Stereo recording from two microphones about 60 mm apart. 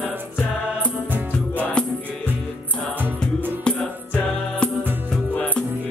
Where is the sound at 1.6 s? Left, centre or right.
Centre.